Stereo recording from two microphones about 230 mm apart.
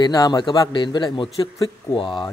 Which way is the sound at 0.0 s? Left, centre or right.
Centre.